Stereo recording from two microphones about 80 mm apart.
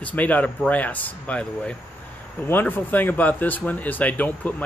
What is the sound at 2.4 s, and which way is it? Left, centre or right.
Speech, left.